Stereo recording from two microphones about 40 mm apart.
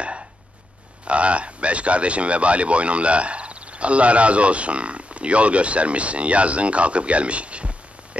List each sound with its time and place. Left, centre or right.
1.0 s speech: right